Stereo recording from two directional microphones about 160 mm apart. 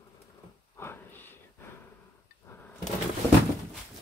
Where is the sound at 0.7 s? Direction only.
15° left (ahead or behind).